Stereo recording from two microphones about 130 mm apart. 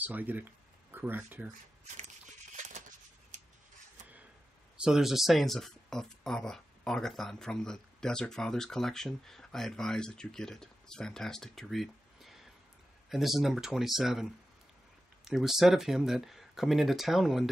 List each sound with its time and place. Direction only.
0.0 s speech: 15° right (ahead or behind)
2.0 s a sound: 65° right (ahead or behind)
4.7 s speech: 5° right (ahead or behind)